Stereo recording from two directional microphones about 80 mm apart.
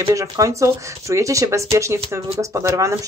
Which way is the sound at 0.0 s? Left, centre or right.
Right.